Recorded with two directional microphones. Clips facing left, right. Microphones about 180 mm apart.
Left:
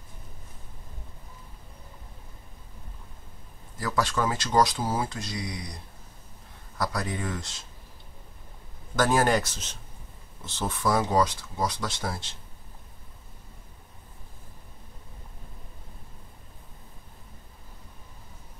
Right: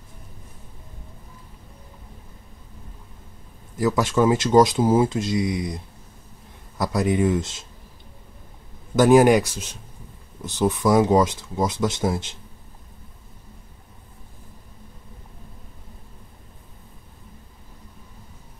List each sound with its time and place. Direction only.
3.7 s speech: 20° right (ahead or behind)
6.8 s speech: 20° right (ahead or behind)
8.9 s speech: 15° right (ahead or behind)